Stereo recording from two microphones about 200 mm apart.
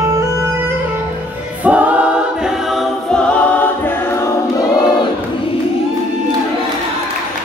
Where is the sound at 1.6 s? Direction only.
5° right (ahead or behind); by 4.6 s 15° left (ahead or behind).